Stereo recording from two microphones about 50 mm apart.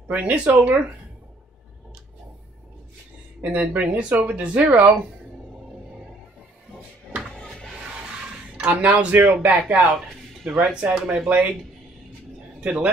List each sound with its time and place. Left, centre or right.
0.1 s speech: right
3.3 s speech: right
7.3 s music: centre
8.6 s speech: right
10.4 s speech: centre
10.8 s speech: right
12.6 s speech: right